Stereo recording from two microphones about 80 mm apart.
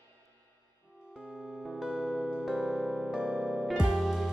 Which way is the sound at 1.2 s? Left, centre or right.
Centre.